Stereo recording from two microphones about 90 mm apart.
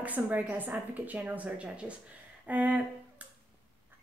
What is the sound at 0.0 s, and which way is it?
A woman's voice, 20° right (ahead or behind).